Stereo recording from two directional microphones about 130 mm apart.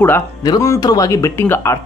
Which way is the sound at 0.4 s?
25° left (ahead or behind).